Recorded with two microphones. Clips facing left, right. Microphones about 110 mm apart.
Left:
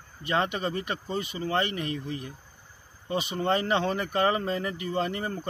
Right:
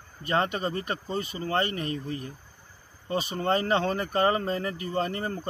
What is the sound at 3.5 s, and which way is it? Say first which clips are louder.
Speech: right 1 dB; 35° right (ahead or behind).